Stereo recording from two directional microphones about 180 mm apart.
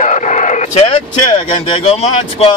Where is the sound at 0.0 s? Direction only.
45° left (ahead or behind).